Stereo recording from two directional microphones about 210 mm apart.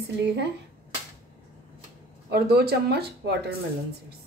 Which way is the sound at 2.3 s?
50° right (ahead or behind).